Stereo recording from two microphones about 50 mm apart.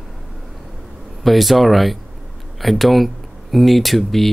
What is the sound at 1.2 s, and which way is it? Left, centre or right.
Speech, centre.